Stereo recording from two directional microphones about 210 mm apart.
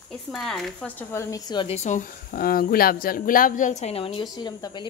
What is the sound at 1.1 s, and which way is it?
A woman's voice, 20° left (ahead or behind).